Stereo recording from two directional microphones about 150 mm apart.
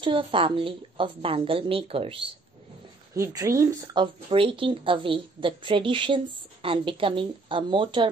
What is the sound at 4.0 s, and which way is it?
A woman's voice, 35° right (ahead or behind).